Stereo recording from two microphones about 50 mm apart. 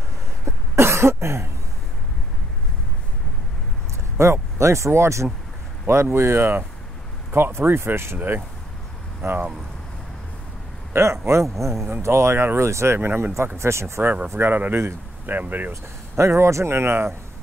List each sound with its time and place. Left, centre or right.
0.5 s cough: right
4.2 s speech: right
5.9 s speech: right
8.2 s speech: right
9.2 s speech: right
10.9 s speech: right
13.6 s speech: right
14.4 s speech: right
15.7 s speech: right